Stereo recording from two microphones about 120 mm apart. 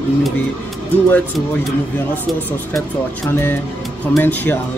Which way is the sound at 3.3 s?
20° left (ahead or behind).